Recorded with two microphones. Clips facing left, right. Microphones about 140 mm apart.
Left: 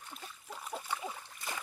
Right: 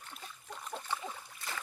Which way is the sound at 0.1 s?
5° left (ahead or behind).